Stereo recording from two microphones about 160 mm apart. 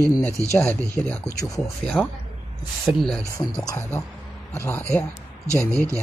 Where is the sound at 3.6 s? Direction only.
20° left (ahead or behind).